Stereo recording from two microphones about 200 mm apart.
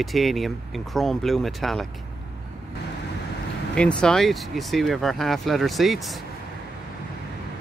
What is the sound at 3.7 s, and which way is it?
Speech, 5° left (ahead or behind).